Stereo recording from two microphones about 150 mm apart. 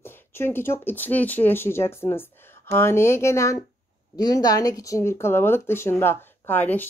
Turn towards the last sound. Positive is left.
turn(degrees=10)  # may be behind; listen again after turning